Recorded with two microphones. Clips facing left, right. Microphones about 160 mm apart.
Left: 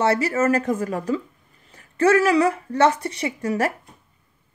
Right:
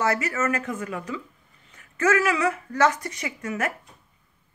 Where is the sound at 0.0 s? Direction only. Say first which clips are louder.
Left 5 dB; 30° left (ahead or behind).